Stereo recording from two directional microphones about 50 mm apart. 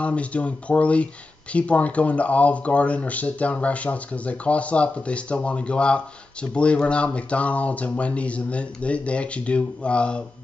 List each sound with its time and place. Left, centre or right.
0.0 s speech: left